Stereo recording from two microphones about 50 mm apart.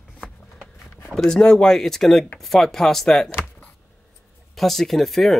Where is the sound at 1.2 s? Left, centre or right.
Centre.